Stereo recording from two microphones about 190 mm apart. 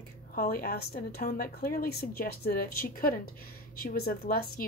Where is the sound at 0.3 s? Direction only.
50° left (ahead or behind).